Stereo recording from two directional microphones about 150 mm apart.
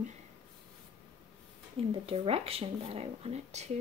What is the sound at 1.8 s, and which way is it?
Speech, 40° right (ahead or behind).